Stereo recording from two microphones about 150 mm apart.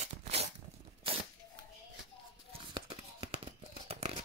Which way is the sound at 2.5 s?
40° right (ahead or behind).